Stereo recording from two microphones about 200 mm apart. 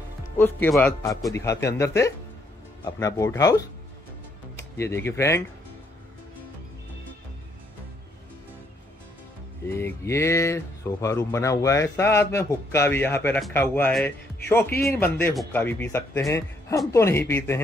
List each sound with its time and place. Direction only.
0.4 s speech: 10° left (ahead or behind)
9.7 s speech: 10° left (ahead or behind)